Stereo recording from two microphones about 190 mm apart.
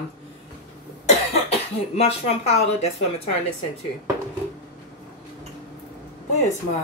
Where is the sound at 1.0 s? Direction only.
35° left (ahead or behind).